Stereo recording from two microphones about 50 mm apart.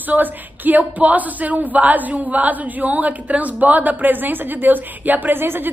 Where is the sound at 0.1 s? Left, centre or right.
Right.